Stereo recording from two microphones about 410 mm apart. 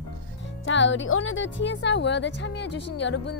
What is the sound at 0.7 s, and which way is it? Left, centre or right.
Speech, left.